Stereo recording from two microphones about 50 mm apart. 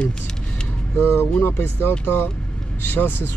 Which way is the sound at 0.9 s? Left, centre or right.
Left.